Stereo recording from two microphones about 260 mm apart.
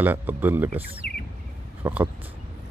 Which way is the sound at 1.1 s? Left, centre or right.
Left.